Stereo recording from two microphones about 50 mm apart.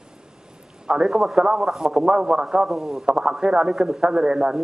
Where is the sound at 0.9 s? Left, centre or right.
Centre.